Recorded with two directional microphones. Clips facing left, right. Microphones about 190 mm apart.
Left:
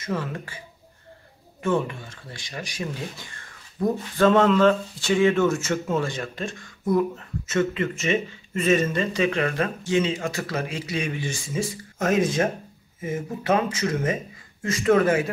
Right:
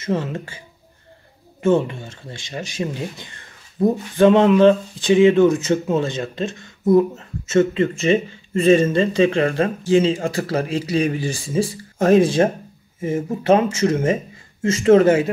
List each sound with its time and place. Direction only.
0.0 s speech: 25° right (ahead or behind)
1.6 s speech: 25° right (ahead or behind)